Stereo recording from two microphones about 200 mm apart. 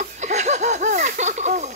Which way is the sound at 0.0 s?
35° right (ahead or behind).